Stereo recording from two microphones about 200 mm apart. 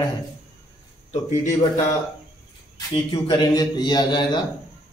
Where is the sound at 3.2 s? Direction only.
20° left (ahead or behind).